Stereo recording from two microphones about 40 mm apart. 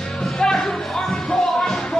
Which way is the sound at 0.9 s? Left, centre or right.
Centre.